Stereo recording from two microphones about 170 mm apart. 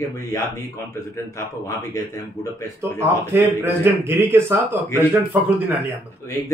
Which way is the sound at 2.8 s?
15° right (ahead or behind).